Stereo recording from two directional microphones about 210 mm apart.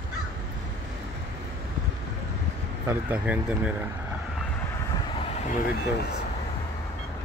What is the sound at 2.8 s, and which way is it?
Speech, 10° right (ahead or behind).